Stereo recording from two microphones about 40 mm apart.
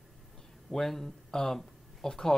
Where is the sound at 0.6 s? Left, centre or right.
Centre.